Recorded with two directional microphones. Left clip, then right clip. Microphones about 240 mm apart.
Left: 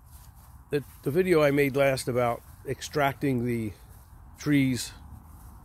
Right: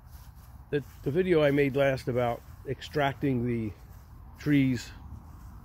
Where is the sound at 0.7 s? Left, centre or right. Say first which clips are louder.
Left 2 dB; centre.